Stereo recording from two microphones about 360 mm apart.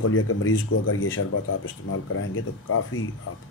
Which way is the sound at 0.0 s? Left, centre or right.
Left.